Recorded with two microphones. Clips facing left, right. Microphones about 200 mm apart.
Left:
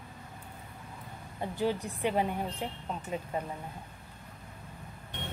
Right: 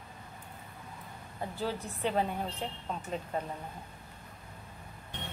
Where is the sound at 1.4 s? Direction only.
15° left (ahead or behind).